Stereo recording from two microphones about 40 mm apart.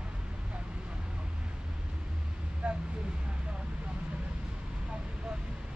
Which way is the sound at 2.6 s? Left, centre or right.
Right.